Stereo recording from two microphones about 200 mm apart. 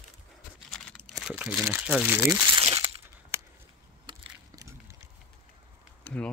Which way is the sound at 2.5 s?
30° right (ahead or behind).